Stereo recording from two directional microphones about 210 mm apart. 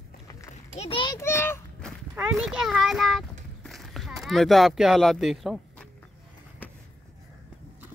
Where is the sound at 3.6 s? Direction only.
Centre (ahead or behind).